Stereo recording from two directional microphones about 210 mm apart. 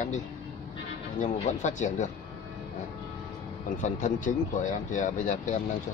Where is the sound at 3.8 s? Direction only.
35° left (ahead or behind).